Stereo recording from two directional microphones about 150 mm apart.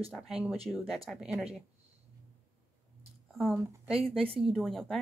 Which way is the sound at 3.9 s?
40° right (ahead or behind).